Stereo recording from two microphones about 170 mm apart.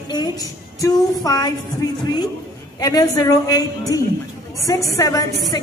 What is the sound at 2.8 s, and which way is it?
A woman's voice, 20° left (ahead or behind).